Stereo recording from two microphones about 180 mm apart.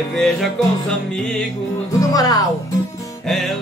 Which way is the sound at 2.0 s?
20° left (ahead or behind).